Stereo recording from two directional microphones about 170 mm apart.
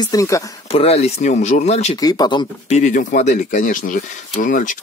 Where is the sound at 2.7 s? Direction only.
50° left (ahead or behind).